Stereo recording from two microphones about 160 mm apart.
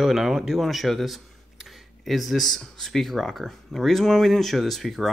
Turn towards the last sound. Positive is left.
turn(degrees=0)  # may be behind; listen again after turning